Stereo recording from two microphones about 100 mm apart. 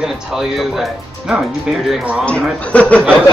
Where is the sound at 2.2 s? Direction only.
15° left (ahead or behind).